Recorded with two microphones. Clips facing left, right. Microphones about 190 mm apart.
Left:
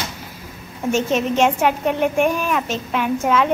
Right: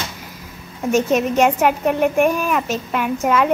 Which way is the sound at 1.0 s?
10° right (ahead or behind).